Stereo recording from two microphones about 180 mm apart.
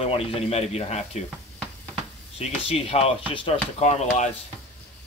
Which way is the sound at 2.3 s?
35° left (ahead or behind).